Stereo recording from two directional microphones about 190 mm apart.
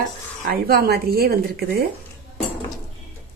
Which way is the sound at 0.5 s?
55° right (ahead or behind).